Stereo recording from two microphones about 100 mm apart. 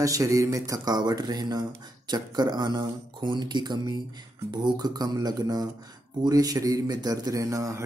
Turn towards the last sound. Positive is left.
turn(degrees=-30)  # may be behind; listen again after turning